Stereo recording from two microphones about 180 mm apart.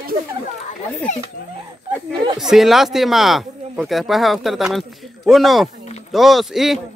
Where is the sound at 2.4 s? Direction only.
Centre (ahead or behind).